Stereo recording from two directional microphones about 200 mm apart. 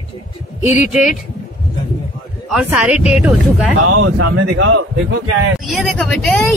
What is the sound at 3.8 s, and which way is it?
Speech, 85° right.